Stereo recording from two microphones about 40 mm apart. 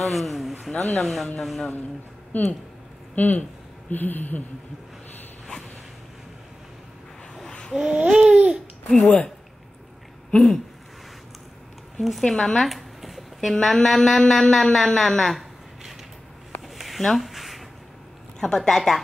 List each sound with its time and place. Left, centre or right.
0.0 s speech: centre
2.3 s speech: left
7.7 s babbling: right
8.9 s a woman's voice: centre
10.3 s a woman's voice: centre
12.0 s speech: centre
12.3 s a woman's voice: centre
12.5 s speech: centre
16.6 s a sound: centre
18.4 s a woman's voice: centre